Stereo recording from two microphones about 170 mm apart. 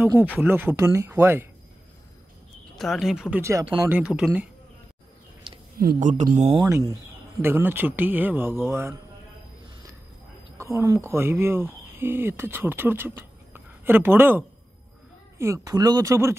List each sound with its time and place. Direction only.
0.0 s a man's voice: 10° right (ahead or behind)
2.7 s speech: centre (ahead or behind); by 4.0 s 15° right (ahead or behind)
4.0 s speech: 5° right (ahead or behind)
5.8 s speech: 55° right (ahead or behind)
6.7 s a man's voice: 20° right (ahead or behind)
10.6 s speech: 15° right (ahead or behind)